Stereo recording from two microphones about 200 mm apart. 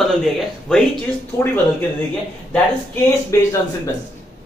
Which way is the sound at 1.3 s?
15° left (ahead or behind).